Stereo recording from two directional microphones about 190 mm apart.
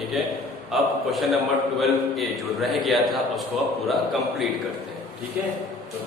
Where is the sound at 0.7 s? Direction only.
Centre (ahead or behind).